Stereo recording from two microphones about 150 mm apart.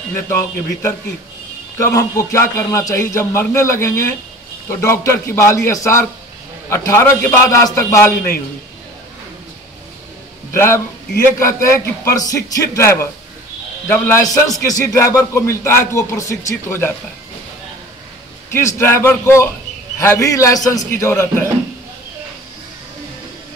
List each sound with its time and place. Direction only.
0.1 s a man's voice: 15° left (ahead or behind)
10.5 s a man's voice: 20° left (ahead or behind)
18.8 s a man's voice: 15° left (ahead or behind)